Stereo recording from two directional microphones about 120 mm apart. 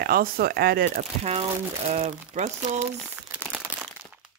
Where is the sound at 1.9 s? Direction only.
70° right (ahead or behind).